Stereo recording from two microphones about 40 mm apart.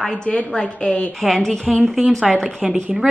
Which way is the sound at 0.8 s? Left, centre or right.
Left.